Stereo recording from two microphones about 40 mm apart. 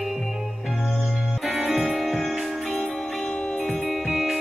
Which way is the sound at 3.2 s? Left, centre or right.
Left.